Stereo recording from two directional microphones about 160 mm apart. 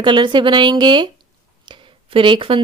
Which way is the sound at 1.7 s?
30° right (ahead or behind).